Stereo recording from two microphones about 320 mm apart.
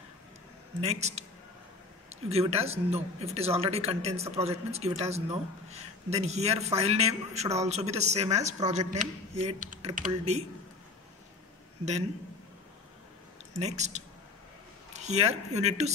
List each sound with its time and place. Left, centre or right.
0.7 s speech: centre
13.6 s speech: right